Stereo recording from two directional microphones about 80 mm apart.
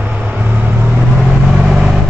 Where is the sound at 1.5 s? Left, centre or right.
Centre.